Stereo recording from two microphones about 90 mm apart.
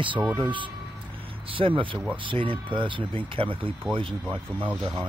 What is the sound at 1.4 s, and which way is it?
Speech, 80° right.